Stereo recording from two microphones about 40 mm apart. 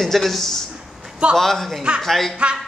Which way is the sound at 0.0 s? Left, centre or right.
Centre.